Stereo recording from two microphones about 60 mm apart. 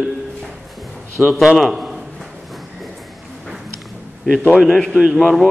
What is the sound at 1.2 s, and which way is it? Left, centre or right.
Speech, centre.